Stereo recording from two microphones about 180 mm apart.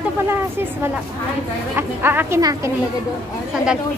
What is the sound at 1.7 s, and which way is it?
Speech, 10° right (ahead or behind).